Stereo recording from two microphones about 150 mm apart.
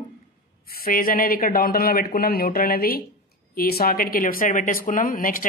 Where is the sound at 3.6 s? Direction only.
90° left; by 5.4 s 70° left (ahead or behind).